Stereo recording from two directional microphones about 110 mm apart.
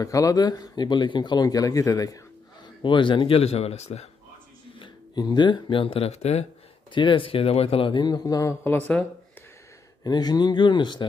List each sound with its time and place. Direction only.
0.0 s speech: 30° left (ahead or behind)
2.8 s speech: 50° left (ahead or behind); by 4.1 s 80° left
4.7 s speech: 45° left (ahead or behind); by 6.4 s 75° left (ahead or behind)
6.9 s speech: 45° left (ahead or behind); by 9.0 s 15° left (ahead or behind)
10.0 s speech: 40° left (ahead or behind)